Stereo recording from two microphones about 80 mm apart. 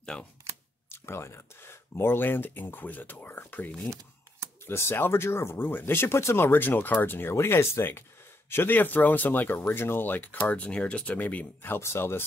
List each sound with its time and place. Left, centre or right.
0.0 s speech: centre
0.8 s speech: left